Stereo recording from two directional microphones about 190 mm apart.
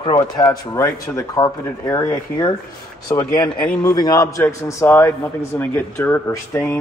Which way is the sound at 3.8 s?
20° left (ahead or behind).